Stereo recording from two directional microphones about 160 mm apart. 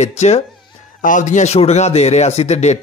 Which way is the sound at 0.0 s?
45° left (ahead or behind).